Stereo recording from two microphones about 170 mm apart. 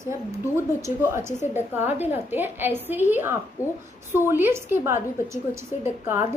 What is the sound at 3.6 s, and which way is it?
Speech, 15° left (ahead or behind).